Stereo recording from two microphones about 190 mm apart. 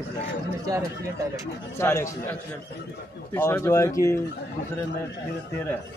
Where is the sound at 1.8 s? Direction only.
15° left (ahead or behind).